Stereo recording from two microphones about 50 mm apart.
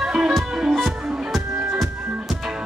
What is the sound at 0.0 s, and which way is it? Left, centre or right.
Music, centre.